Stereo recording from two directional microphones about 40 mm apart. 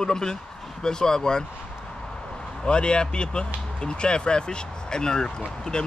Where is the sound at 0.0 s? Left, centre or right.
Centre.